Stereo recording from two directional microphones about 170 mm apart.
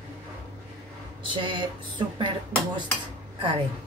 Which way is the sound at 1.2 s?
30° right (ahead or behind).